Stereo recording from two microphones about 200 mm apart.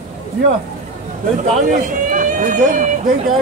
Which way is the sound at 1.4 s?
40° right (ahead or behind).